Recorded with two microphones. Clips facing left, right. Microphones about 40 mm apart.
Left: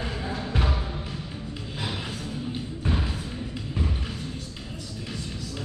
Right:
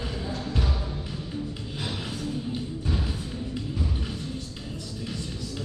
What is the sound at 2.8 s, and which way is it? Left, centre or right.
Thump, left.